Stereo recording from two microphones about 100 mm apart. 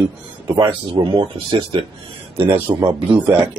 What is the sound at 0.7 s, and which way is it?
Speech, 55° right (ahead or behind).